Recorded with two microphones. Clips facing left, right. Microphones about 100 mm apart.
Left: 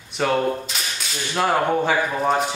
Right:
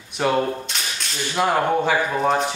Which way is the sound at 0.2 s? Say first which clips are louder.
Even; centre (ahead or behind).